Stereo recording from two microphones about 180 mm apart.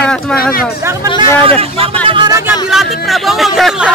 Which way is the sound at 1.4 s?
30° right (ahead or behind).